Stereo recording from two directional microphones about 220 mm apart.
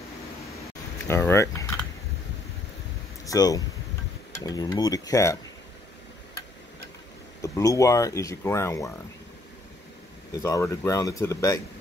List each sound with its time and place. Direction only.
1.0 s a sound: 10° left (ahead or behind)
3.3 s speech: 15° left (ahead or behind)
7.4 s speech: 15° left (ahead or behind)
10.3 s speech: 15° left (ahead or behind)